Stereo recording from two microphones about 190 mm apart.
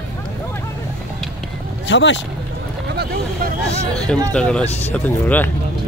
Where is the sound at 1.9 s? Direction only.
70° left (ahead or behind).